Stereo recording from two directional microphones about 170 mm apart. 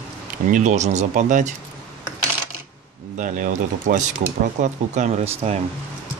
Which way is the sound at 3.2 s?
50° right (ahead or behind).